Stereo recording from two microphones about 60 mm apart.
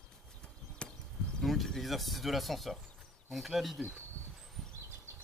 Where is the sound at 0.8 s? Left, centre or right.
Centre.